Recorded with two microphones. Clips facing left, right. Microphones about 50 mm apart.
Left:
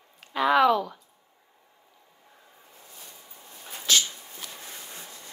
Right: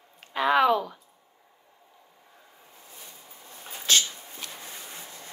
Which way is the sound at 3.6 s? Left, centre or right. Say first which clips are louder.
Even; right.